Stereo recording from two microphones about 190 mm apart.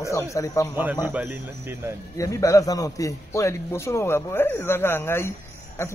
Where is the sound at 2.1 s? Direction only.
15° left (ahead or behind).